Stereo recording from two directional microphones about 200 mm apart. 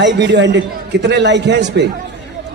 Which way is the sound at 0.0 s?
60° right (ahead or behind).